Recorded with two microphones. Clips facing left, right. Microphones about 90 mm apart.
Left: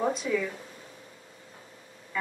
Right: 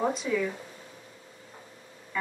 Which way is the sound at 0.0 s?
Centre (ahead or behind).